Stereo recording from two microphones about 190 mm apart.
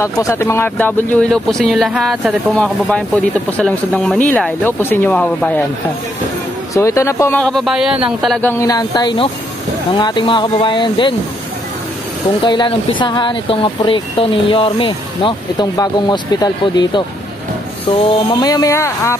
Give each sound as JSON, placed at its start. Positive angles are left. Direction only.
{"t": 0.0, "sound": "speech", "side_deg": 15}
{"t": 6.7, "sound": "speech", "side_deg": 15}
{"t": 8.4, "sound": "speech", "side_deg": 10}
{"t": 12.4, "sound": "speech", "side_deg": 25}
{"t": 18.3, "sound": "speech", "side_deg": 20}